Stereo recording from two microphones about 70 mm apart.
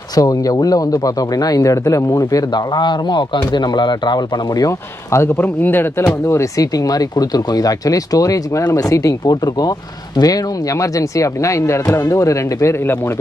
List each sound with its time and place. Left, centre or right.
0.1 s speech: left
4.6 s speech: left
5.4 s speech: left
6.2 s speech: left